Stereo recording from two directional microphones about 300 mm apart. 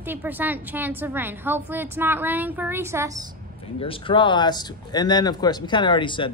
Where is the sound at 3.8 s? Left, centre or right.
Centre.